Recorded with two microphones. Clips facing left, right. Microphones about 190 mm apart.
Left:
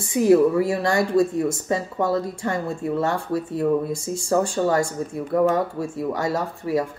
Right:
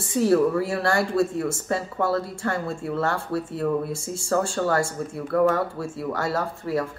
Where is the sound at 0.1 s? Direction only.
15° left (ahead or behind).